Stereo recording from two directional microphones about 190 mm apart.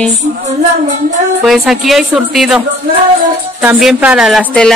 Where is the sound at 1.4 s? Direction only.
Centre (ahead or behind).